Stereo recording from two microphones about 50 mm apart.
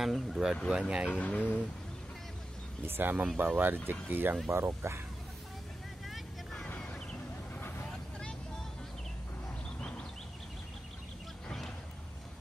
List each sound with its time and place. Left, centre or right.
0.0 s speech: centre
0.7 s speech: centre
1.1 s speech: left
2.8 s speech: right
4.5 s speech: right
6.8 s a sound: centre